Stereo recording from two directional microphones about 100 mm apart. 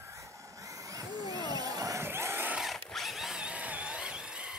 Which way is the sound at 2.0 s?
25° right (ahead or behind).